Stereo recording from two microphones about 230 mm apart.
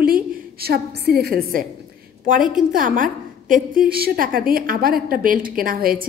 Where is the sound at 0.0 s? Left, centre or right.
Right.